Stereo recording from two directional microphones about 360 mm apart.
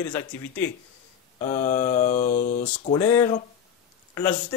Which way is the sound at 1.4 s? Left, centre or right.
Centre.